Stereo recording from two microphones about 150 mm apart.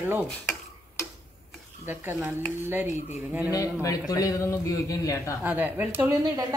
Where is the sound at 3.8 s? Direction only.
20° left (ahead or behind).